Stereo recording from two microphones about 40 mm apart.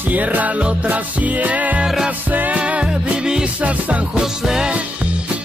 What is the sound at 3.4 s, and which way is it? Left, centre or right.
Music, right.